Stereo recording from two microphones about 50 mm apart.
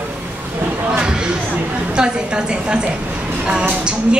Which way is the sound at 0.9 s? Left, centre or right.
Centre.